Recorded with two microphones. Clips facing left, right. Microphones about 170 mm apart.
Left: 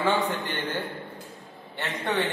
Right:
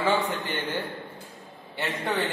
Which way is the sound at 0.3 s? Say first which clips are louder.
Even; 10° right (ahead or behind).